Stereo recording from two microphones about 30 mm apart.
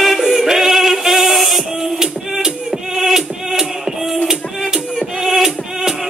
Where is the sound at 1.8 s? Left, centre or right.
Centre.